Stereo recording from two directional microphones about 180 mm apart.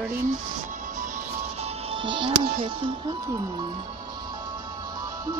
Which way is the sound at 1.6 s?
30° right (ahead or behind).